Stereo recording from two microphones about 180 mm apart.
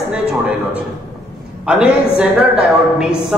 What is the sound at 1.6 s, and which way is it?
A man's voice, 5° right (ahead or behind).